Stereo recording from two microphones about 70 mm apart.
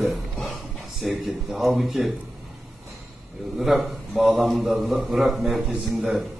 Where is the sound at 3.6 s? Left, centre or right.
Centre.